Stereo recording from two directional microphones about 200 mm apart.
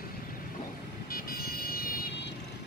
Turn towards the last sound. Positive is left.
turn(degrees=45)  # may be behind; listen again after turning